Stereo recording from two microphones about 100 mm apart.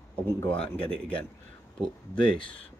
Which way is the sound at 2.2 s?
55° left (ahead or behind).